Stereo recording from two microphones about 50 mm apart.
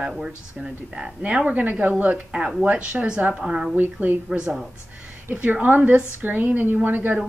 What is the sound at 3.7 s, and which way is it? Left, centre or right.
Speech, right.